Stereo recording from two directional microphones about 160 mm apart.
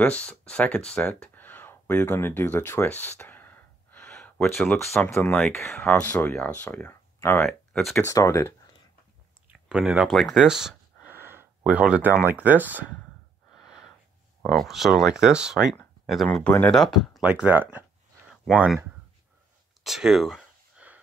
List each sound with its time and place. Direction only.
0.0 s speech: 5° left (ahead or behind)
7.4 s speech: 5° left (ahead or behind)
8.0 s speech: 20° left (ahead or behind)
9.7 s speech: 5° right (ahead or behind)
11.1 s speech: 15° right (ahead or behind)
13.6 s a sound: centre (ahead or behind)
14.4 s speech: centre (ahead or behind)
19.8 s a sound: centre (ahead or behind)